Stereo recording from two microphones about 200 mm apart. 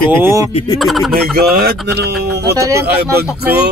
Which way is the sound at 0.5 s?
20° left (ahead or behind).